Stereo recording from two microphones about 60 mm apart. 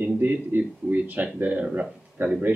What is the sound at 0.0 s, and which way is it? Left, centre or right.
A man's voice, right.